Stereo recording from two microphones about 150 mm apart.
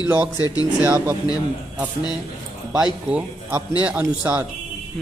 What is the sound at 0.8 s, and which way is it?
Speech, 20° right (ahead or behind).